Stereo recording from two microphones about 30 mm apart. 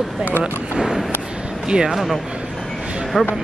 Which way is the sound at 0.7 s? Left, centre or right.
Centre.